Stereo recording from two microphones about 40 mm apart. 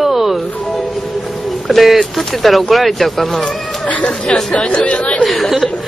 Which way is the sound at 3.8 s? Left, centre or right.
Left.